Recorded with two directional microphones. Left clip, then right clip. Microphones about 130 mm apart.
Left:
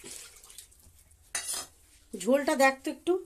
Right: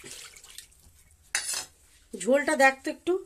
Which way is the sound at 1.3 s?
25° right (ahead or behind).